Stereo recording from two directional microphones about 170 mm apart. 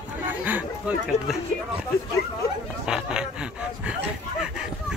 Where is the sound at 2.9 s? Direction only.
5° right (ahead or behind).